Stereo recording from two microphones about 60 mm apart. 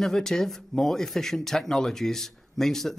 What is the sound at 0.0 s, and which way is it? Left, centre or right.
Speech, centre.